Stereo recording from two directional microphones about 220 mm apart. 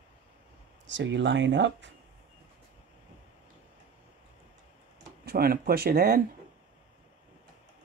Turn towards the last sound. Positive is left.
turn(degrees=-45)  # may be behind; listen again after turning